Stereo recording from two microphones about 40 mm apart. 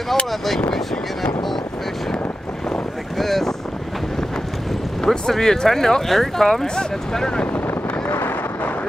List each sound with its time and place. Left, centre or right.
3.2 s boat: centre
5.0 s speech: centre
8.1 s a sound: left